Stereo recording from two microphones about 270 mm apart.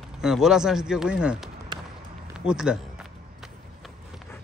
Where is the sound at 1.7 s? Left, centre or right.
Centre.